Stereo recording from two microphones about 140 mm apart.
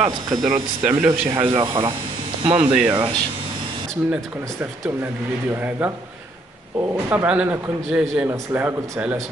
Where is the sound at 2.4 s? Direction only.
40° right (ahead or behind).